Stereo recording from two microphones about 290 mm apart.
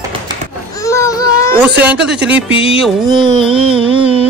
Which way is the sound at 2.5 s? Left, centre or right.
Centre.